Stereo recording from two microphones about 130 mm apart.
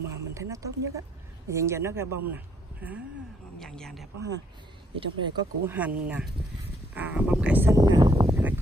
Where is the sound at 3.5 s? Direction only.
5° left (ahead or behind).